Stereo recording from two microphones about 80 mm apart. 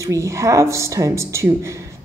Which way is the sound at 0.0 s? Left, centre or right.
Right.